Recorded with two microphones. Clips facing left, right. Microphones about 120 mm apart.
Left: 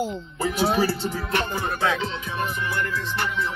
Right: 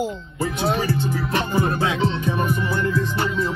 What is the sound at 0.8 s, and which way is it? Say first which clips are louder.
Music: right 2 dB; 20° right (ahead or behind).